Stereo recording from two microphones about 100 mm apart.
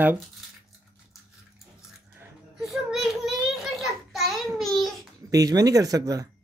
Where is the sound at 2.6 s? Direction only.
5° right (ahead or behind).